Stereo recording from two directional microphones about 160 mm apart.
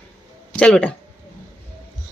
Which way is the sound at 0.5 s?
5° left (ahead or behind).